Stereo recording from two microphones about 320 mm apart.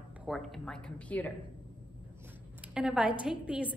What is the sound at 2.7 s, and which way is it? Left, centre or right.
Speech, centre.